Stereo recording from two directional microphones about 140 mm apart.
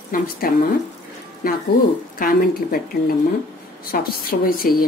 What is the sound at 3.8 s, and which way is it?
Speech, 90° left.